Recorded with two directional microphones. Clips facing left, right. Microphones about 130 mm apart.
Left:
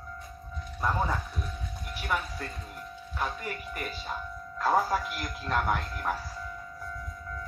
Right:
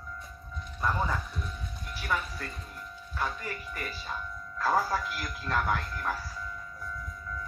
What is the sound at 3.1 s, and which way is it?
Speech, 20° left (ahead or behind).